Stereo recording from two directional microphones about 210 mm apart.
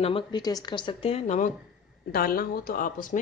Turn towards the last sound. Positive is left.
turn(degrees=40)  # may be behind; listen again after turning